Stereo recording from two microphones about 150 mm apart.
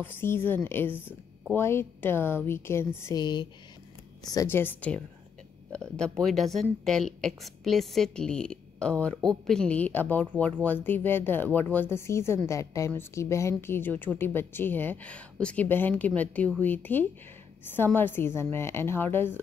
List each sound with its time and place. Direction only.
0.0 s a woman's voice: 15° left (ahead or behind)
4.5 s a woman's voice: 15° left (ahead or behind)